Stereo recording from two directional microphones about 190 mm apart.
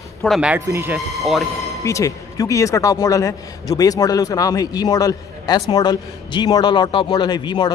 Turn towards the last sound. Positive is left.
turn(degrees=25)  # may be behind; listen again after turning